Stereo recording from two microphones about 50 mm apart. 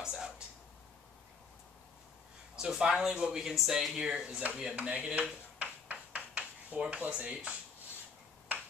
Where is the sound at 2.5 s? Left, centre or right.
Centre.